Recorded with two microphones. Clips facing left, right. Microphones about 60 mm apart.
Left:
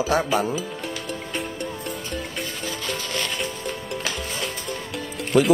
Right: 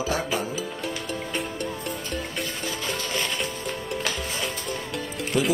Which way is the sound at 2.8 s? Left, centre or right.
Centre.